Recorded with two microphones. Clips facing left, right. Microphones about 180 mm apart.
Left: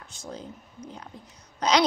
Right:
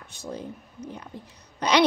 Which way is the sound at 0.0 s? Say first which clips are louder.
Right 4 dB; 60° right (ahead or behind).